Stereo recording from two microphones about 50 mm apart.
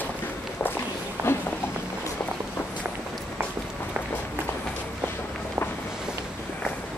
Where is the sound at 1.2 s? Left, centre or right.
Right.